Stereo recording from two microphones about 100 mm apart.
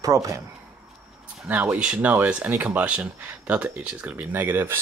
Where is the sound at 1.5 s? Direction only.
15° right (ahead or behind).